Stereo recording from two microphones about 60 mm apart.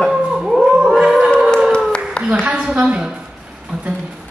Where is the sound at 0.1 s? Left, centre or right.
Centre.